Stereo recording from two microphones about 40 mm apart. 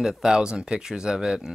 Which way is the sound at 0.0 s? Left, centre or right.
Centre.